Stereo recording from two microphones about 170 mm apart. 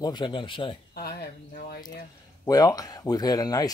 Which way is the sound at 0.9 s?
70° left (ahead or behind).